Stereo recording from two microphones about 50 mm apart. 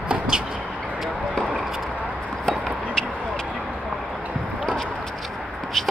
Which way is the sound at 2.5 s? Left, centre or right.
Centre.